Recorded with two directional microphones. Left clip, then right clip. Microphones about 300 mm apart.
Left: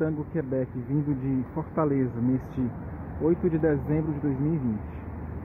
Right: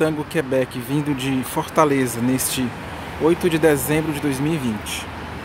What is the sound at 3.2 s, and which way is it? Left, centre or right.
Speech, centre.